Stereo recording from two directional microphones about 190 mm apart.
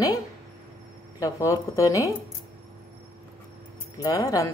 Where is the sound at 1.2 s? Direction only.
15° left (ahead or behind).